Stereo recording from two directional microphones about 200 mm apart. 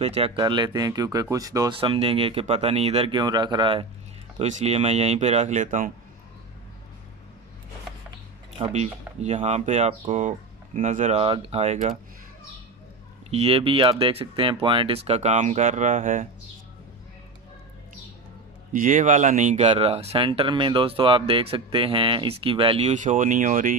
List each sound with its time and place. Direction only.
0.0 s speech: 30° right (ahead or behind)
4.4 s speech: 35° right (ahead or behind)
8.7 s speech: 35° right (ahead or behind)
13.3 s speech: 30° right (ahead or behind)
18.7 s speech: 40° right (ahead or behind)